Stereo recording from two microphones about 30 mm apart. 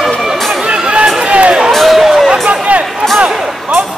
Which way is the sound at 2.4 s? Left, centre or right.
Right.